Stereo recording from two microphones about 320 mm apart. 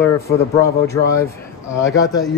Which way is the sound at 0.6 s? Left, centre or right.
Centre.